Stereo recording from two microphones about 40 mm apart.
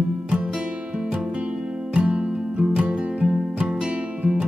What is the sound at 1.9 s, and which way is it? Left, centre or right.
Music, right.